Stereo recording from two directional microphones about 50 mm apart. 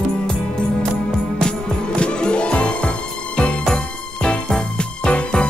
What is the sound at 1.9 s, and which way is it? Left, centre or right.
Music, left.